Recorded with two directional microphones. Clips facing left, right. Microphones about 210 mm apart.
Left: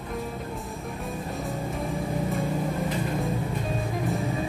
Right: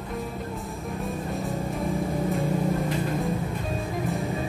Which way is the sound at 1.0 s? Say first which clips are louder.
Right 2 dB; centre (ahead or behind).